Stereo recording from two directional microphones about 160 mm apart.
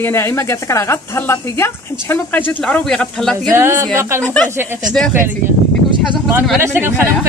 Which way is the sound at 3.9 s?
15° right (ahead or behind).